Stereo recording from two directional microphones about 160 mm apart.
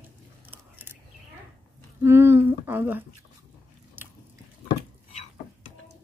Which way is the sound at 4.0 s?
10° right (ahead or behind).